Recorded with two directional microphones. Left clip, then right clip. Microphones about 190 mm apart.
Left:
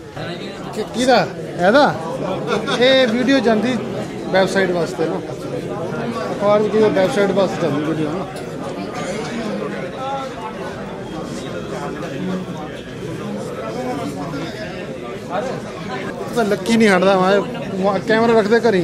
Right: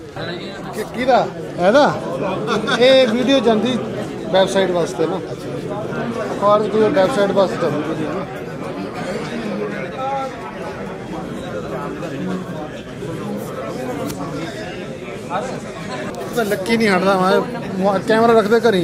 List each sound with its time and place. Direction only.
1.6 s speech: 15° left (ahead or behind)
2.4 s speech: 25° right (ahead or behind)
2.8 s speech: 10° left (ahead or behind)
6.4 s speech: 25° left (ahead or behind)
16.3 s speech: 45° left (ahead or behind)
17.0 s speech: 25° left (ahead or behind)
17.8 s speech: 10° left (ahead or behind)